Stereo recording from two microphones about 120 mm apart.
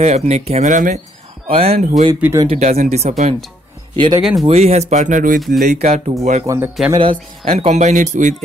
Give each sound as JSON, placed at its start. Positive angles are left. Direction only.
{"t": 0.0, "sound": "speech", "side_deg": -60}
{"t": 1.5, "sound": "speech", "side_deg": -55}
{"t": 3.9, "sound": "speech", "side_deg": -40}
{"t": 4.2, "sound": "speech", "side_deg": -5}
{"t": 4.5, "sound": "speech", "side_deg": -60}
{"t": 5.4, "sound": "speech", "side_deg": 0}
{"t": 5.7, "sound": "speech", "side_deg": -70}
{"t": 6.4, "sound": "speech", "side_deg": -25}
{"t": 7.0, "sound": "speech", "side_deg": -45}
{"t": 7.5, "sound": "speech", "side_deg": -65}